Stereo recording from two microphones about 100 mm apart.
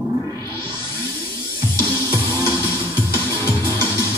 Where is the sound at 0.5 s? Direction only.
25° left (ahead or behind).